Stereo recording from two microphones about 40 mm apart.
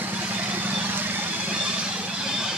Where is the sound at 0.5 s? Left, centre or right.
Right.